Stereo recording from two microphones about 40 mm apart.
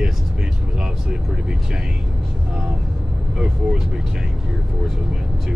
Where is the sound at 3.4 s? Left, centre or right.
Centre.